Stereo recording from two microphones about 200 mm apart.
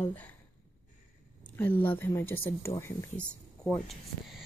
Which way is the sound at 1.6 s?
10° left (ahead or behind).